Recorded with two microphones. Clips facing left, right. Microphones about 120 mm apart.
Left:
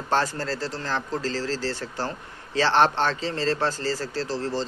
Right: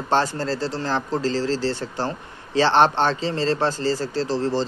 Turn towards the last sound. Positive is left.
turn(degrees=-25)  # may be behind; listen again after turning